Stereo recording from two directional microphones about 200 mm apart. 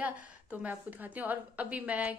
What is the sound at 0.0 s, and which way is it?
A woman's voice, 5° right (ahead or behind).